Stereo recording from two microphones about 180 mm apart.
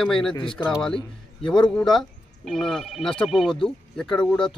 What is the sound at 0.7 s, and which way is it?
Speech, 5° left (ahead or behind).